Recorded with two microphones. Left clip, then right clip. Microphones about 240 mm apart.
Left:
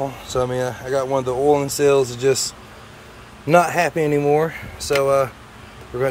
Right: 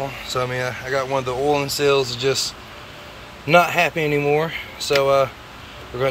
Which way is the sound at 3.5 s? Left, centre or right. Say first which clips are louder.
Even; left.